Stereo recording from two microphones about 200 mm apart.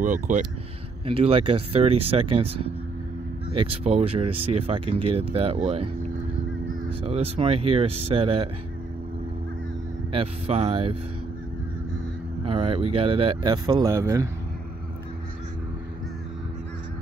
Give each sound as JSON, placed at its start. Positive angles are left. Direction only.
{"t": 0.0, "sound": "speech", "side_deg": -40}
{"t": 1.0, "sound": "speech", "side_deg": -30}
{"t": 7.0, "sound": "speech", "side_deg": -30}
{"t": 10.1, "sound": "speech", "side_deg": -30}
{"t": 12.4, "sound": "speech", "side_deg": -25}